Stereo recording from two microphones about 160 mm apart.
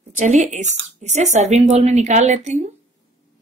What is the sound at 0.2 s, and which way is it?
A woman's voice, 45° right (ahead or behind).